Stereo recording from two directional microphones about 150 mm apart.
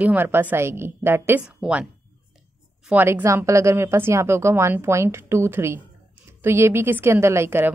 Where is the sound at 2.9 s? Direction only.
15° right (ahead or behind).